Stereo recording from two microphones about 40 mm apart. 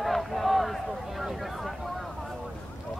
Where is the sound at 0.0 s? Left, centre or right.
Centre.